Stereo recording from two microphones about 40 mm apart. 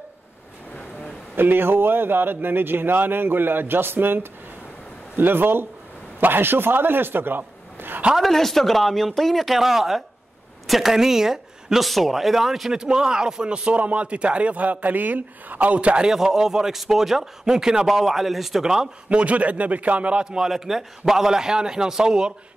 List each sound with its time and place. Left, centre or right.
1.3 s speech: right
8.2 s speech: centre
11.8 s speech: centre
12.7 s speech: centre; by 16.0 s right
16.0 s speech: centre
19.0 s speech: right
20.2 s speech: centre